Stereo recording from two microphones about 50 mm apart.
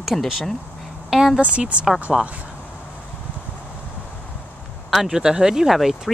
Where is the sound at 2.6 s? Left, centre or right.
Left.